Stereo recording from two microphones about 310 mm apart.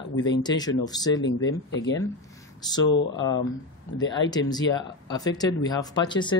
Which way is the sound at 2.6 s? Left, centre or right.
Centre.